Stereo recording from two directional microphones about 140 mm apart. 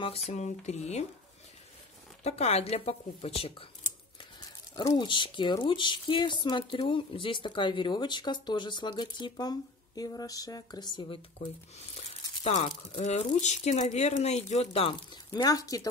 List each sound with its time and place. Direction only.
0.3 s speech: 55° left (ahead or behind)
2.2 s speech: 50° left (ahead or behind)
4.7 s speech: 30° left (ahead or behind)
11.3 s speech: 50° left (ahead or behind); by 15.9 s 25° left (ahead or behind)